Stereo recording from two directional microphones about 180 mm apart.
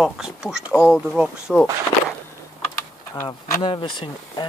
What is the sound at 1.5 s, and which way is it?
Speech, 5° left (ahead or behind).